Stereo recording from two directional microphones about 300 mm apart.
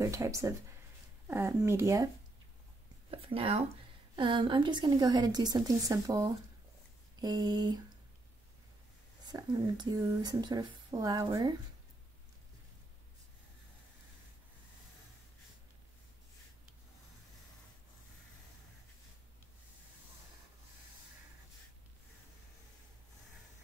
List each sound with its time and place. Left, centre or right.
0.0 s speech: centre
3.1 s speech: centre
9.2 s speech: centre